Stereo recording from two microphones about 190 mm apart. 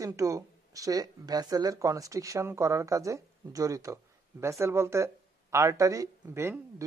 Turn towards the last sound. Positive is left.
turn(degrees=-10)  # may be behind; listen again after turning